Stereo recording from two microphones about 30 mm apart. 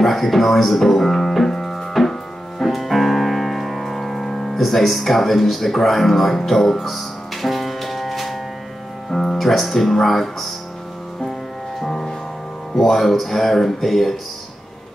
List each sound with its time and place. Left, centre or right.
0.0 s music: centre
2.6 s music: centre
10.0 s speech: centre
11.8 s music: centre
12.7 s speech: centre